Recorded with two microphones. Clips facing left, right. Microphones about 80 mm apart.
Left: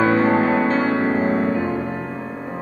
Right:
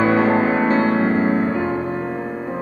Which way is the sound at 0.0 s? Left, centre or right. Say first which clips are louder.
Even; centre.